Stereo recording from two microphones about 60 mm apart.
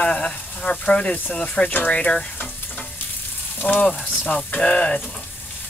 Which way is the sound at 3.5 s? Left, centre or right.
Left.